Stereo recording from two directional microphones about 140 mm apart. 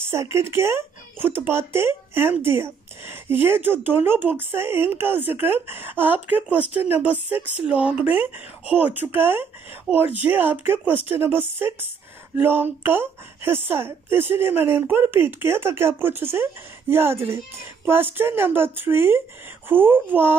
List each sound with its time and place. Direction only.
0.1 s speech: 20° right (ahead or behind)